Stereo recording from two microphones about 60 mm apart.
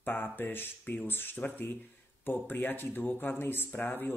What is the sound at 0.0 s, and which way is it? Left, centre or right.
Speech, left.